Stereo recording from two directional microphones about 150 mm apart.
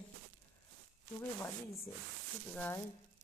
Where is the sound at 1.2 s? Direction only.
15° left (ahead or behind).